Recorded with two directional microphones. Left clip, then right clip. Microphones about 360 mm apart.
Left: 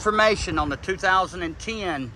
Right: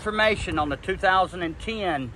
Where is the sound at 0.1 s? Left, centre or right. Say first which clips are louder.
Left 2 dB; centre.